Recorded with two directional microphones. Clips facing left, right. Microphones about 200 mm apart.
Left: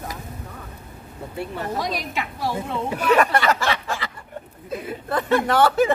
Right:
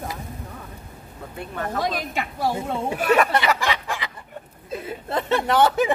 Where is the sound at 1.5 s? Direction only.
50° right (ahead or behind).